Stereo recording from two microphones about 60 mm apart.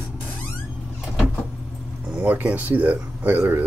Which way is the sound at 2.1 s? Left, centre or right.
Right.